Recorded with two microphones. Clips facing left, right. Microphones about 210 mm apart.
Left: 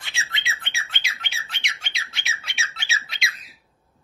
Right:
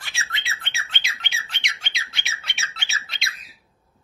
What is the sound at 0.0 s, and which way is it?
Squawk, 20° left (ahead or behind).